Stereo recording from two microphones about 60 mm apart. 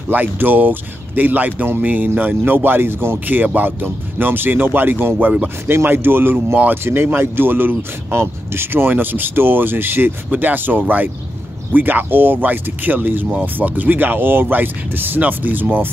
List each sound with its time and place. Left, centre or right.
0.1 s speech: right